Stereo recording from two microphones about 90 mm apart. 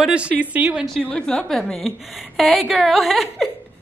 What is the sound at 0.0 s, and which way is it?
Speech, 10° right (ahead or behind).